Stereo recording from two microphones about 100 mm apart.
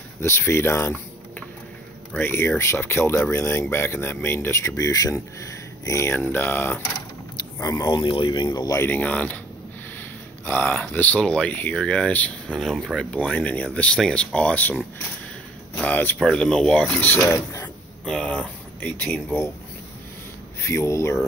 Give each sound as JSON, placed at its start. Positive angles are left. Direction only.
{"t": 0.2, "sound": "speech", "side_deg": 25}
{"t": 2.1, "sound": "speech", "side_deg": 20}
{"t": 7.6, "sound": "speech", "side_deg": 40}
{"t": 8.7, "sound": "speech", "side_deg": 20}
{"t": 10.4, "sound": "speech", "side_deg": 15}
{"t": 12.6, "sound": "speech", "side_deg": 0}
{"t": 13.1, "sound": "speech", "side_deg": 15}
{"t": 15.8, "sound": "speech", "side_deg": 20}
{"t": 16.2, "sound": "speech", "side_deg": 5}
{"t": 17.3, "sound": "speech", "side_deg": 30}
{"t": 18.0, "sound": "speech", "side_deg": 10}
{"t": 20.6, "sound": "speech", "side_deg": 30}